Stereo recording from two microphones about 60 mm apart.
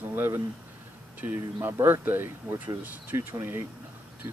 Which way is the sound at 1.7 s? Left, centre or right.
Right.